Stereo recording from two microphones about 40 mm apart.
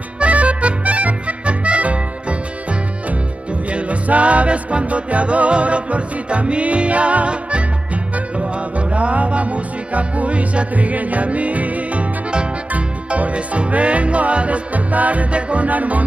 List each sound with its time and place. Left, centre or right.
0.2 s accordion: right
3.7 s music: right